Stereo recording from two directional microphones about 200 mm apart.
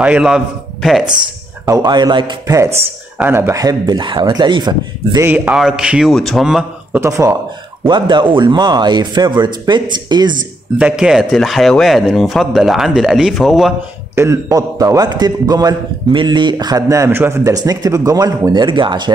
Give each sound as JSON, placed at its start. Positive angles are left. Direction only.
{"t": 0.0, "sound": "speech", "side_deg": -5}
{"t": 1.7, "sound": "a man's voice", "side_deg": -20}
{"t": 7.9, "sound": "a man's voice", "side_deg": -25}
{"t": 10.8, "sound": "speech", "side_deg": -5}
{"t": 14.1, "sound": "a man's voice", "side_deg": -15}